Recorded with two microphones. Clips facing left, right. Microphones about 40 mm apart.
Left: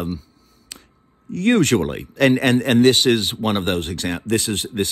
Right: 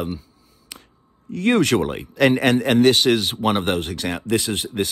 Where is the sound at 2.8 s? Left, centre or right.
Left.